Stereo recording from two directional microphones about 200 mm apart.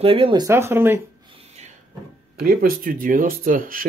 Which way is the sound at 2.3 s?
45° right (ahead or behind).